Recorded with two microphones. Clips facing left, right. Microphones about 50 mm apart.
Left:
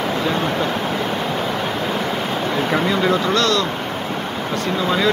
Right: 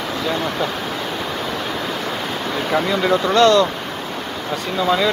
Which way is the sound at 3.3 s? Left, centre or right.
Right.